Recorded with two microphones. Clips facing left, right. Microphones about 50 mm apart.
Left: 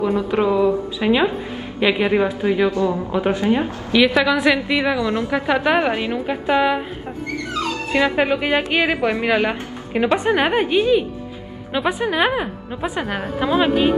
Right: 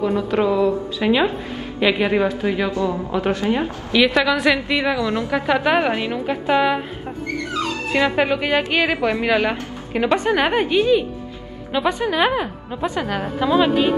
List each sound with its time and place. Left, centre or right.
0.0 s a woman's voice: centre
2.7 s speech: left
3.1 s a woman's voice: centre
4.0 s a woman's voice: centre
7.9 s a woman's voice: centre